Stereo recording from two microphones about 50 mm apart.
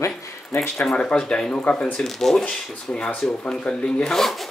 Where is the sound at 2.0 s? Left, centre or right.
Centre.